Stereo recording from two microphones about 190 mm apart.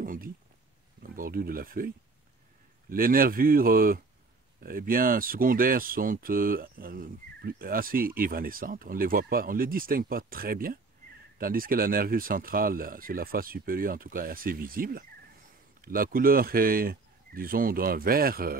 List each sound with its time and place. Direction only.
0.0 s a sound: 45° right (ahead or behind)
1.0 s speech: 50° right (ahead or behind)
2.9 s speech: 50° right (ahead or behind)